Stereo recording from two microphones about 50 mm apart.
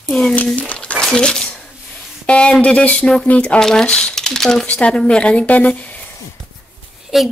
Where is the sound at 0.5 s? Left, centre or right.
Left.